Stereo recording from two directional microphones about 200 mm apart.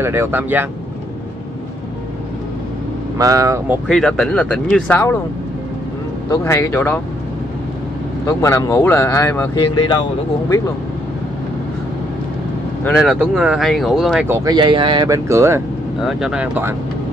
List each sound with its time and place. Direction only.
0.0 s speech: 10° right (ahead or behind)
3.2 s speech: 15° right (ahead or behind)
3.8 s speech: centre (ahead or behind)
6.3 s speech: 15° left (ahead or behind)
8.3 s speech: 15° left (ahead or behind)
12.8 s speech: centre (ahead or behind)
16.0 s speech: centre (ahead or behind)